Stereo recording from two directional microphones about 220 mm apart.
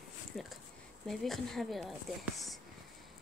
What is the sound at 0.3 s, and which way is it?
Speech, centre (ahead or behind).